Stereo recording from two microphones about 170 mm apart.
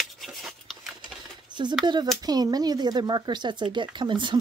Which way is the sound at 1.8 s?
25° right (ahead or behind).